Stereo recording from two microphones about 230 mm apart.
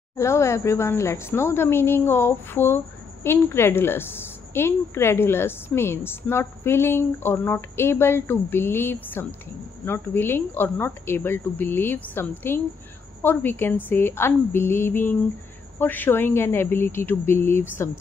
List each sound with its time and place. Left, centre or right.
0.2 s a woman's voice: centre